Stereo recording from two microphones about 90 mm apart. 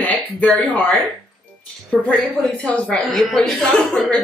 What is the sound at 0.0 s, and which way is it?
Speech, 15° left (ahead or behind).